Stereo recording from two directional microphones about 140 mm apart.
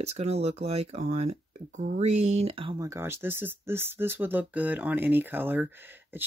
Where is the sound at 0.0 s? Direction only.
50° right (ahead or behind).